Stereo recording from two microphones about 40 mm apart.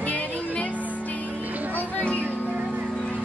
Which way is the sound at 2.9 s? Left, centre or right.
Left.